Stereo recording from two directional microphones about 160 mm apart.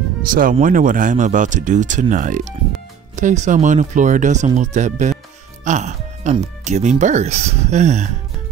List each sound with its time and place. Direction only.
0.2 s speech: 60° right (ahead or behind)
5.6 s music: 50° right (ahead or behind)
6.3 s speech: 45° right (ahead or behind)